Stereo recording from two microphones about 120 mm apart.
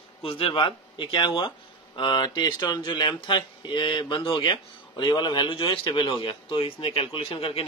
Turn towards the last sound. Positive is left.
turn(degrees=50)  # may be behind; listen again after turning